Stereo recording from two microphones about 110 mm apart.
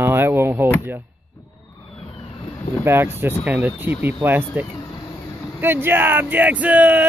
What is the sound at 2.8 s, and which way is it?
Speech, 20° right (ahead or behind).